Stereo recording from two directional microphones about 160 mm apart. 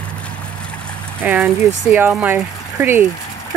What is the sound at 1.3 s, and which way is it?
Speech, 15° right (ahead or behind).